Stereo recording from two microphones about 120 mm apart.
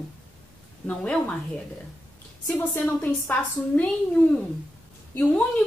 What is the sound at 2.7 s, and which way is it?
A woman's voice, 15° left (ahead or behind).